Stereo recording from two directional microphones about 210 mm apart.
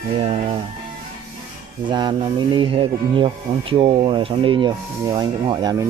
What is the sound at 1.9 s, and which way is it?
Speech, 20° right (ahead or behind).